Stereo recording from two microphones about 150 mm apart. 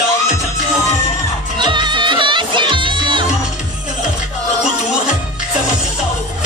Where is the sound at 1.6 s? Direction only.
30° right (ahead or behind).